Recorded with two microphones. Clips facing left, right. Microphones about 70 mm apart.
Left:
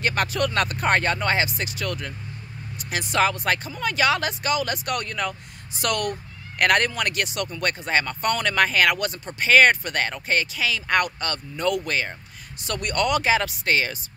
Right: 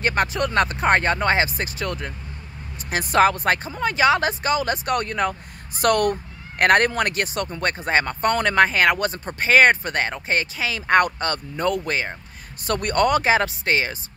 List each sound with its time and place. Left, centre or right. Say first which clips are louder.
0.0 s speech: right 2 dB; right